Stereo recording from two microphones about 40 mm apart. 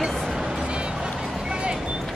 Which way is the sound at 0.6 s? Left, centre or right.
Right.